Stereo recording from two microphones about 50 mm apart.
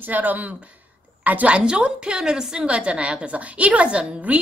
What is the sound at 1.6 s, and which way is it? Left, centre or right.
A woman's voice, centre.